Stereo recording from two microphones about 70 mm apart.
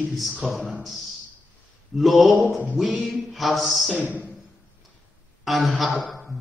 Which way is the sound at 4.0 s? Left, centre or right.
Right.